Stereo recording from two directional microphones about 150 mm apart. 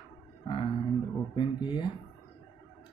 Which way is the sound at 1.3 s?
30° left (ahead or behind).